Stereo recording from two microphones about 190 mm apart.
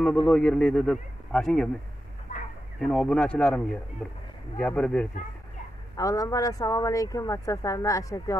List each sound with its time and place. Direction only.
0.0 s a man's voice: 5° left (ahead or behind)
2.9 s a man's voice: 5° left (ahead or behind)
5.9 s a woman's voice: 15° left (ahead or behind)